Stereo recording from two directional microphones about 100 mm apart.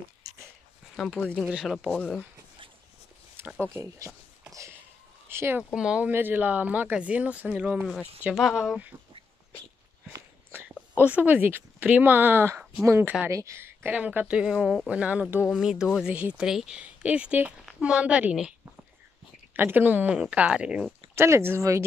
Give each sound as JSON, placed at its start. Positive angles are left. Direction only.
{"t": 1.0, "sound": "speech", "side_deg": -5}
{"t": 3.4, "sound": "a sound", "side_deg": -20}
{"t": 5.3, "sound": "speech", "side_deg": -25}
{"t": 5.6, "sound": "speech", "side_deg": -5}
{"t": 8.4, "sound": "speech", "side_deg": 0}
{"t": 10.5, "sound": "speech", "side_deg": -15}
{"t": 13.9, "sound": "speech", "side_deg": -15}
{"t": 15.5, "sound": "speech", "side_deg": -5}
{"t": 19.5, "sound": "speech", "side_deg": -20}
{"t": 21.1, "sound": "speech", "side_deg": -25}